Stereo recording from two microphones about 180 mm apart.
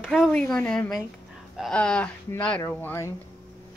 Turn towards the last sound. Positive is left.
turn(degrees=15)  # may be behind; listen again after turning